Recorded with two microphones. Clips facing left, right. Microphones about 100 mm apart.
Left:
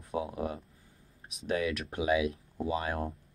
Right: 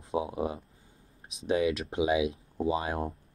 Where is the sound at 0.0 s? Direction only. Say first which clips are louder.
Right 3 dB; 20° right (ahead or behind).